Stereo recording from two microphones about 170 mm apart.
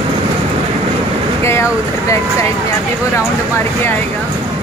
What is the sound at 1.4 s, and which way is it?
Vehicle, 15° left (ahead or behind).